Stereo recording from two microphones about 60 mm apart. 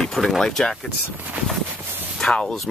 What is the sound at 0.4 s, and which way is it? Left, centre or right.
Speech, centre.